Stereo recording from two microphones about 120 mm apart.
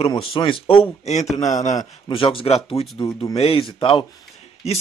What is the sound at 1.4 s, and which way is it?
Speech, 85° left.